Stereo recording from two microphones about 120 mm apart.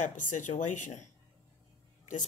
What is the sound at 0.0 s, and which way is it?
Speech, 90° left.